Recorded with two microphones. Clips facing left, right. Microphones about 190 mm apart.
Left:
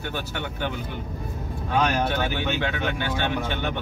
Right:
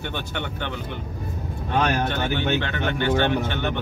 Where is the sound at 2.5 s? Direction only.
10° left (ahead or behind).